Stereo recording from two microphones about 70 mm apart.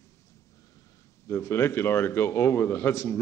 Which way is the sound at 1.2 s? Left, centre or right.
Left.